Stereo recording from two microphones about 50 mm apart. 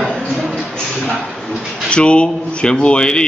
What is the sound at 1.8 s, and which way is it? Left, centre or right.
Speech, left.